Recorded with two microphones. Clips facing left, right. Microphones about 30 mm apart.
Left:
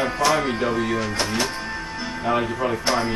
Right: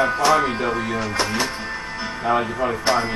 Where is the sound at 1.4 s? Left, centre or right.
Centre.